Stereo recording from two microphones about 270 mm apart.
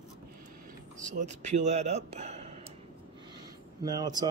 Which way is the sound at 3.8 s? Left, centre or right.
Centre.